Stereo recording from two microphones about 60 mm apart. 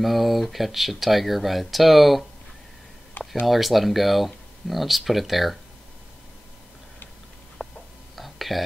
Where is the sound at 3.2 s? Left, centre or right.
Left.